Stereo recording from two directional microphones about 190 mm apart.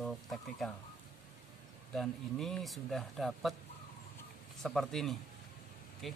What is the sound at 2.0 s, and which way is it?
Speech, centre (ahead or behind).